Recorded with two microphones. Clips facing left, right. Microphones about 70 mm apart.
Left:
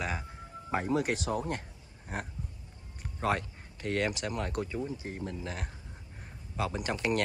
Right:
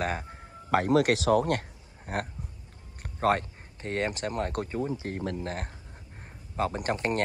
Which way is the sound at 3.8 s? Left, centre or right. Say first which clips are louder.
Right 1 dB; right.